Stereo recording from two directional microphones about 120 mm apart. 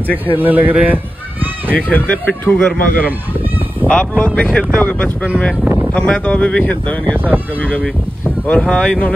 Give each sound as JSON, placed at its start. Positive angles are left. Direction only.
{"t": 0.4, "sound": "a man's voice", "side_deg": -15}
{"t": 1.9, "sound": "speech", "side_deg": 10}
{"t": 7.2, "sound": "a man's voice", "side_deg": -15}
{"t": 7.6, "sound": "speech", "side_deg": 10}